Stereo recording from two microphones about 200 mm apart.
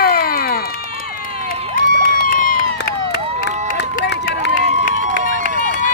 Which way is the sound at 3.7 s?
50° left (ahead or behind).